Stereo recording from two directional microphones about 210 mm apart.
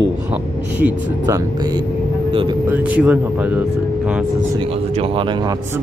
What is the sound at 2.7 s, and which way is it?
Speech, 5° right (ahead or behind).